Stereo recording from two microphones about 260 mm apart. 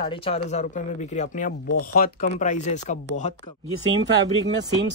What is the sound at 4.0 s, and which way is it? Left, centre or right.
Speech, right.